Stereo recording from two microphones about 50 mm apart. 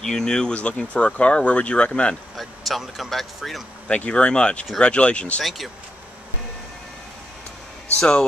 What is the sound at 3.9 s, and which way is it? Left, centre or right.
Speech, left.